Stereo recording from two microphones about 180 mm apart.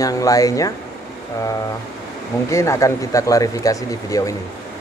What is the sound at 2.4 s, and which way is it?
Speech, 15° left (ahead or behind).